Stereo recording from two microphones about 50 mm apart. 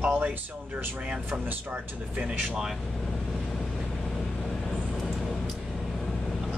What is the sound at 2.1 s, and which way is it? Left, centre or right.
Speech, right.